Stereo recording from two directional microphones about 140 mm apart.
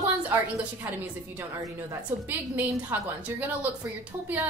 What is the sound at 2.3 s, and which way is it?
A woman's voice, 10° right (ahead or behind).